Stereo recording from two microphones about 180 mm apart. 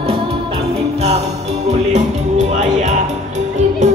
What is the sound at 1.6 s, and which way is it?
Music, 40° right (ahead or behind).